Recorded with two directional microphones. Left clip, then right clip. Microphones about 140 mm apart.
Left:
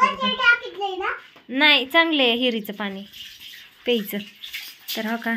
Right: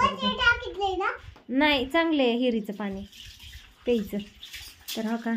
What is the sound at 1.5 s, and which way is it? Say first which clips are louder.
A woman's voice: left 6 dB; 25° right (ahead or behind).